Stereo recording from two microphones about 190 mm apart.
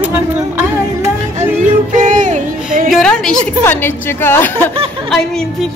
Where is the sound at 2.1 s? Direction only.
40° right (ahead or behind).